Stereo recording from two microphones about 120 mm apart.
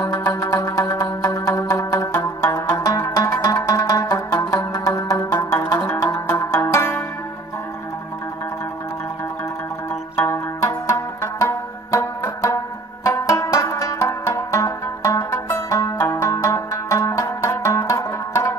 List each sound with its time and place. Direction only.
0.0 s music: 30° left (ahead or behind)
10.1 s music: 25° left (ahead or behind)